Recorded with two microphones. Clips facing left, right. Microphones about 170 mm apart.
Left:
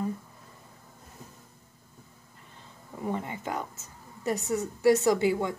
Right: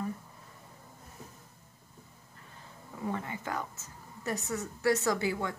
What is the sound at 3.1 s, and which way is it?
A woman's voice, 20° left (ahead or behind).